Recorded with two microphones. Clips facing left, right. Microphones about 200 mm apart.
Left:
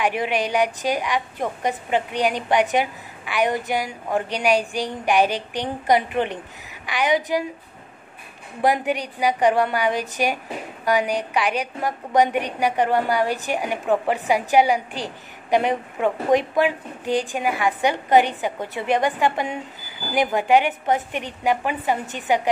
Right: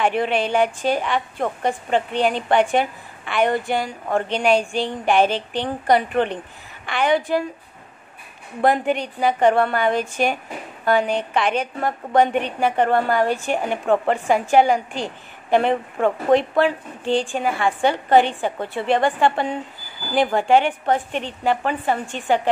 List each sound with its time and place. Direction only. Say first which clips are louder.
0.0 s a woman's voice: right 2 dB; 15° left (ahead or behind)
8.6 s a woman's voice: right 2 dB; 15° left (ahead or behind)